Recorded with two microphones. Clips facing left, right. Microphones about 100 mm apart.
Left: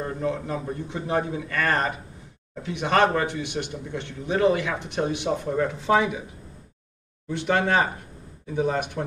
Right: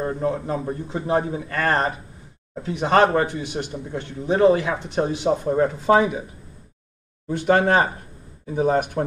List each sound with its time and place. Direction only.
0.0 s speech: 30° right (ahead or behind)
7.2 s speech: 40° right (ahead or behind)